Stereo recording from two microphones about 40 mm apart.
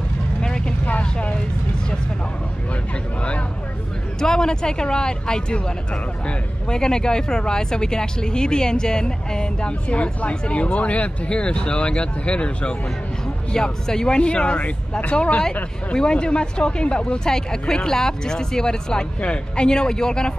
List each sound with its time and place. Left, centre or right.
0.4 s vehicle: centre
4.2 s speech: centre
13.5 s speech: centre; by 15.4 s left
15.9 s speech: left